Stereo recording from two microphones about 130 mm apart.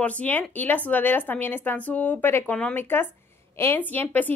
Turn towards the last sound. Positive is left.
turn(degrees=15)  # may be behind; listen again after turning